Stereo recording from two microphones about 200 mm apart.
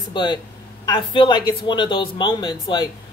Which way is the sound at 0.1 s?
20° left (ahead or behind).